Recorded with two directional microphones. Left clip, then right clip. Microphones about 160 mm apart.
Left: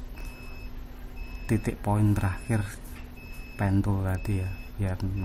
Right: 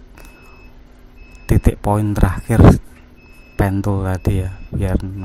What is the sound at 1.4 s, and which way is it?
Speech, 35° right (ahead or behind).